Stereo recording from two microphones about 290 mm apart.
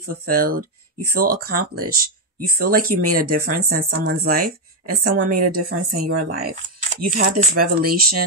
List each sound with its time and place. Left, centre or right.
0.1 s a woman's voice: right